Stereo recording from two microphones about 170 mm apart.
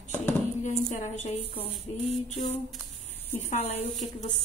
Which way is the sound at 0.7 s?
45° left (ahead or behind).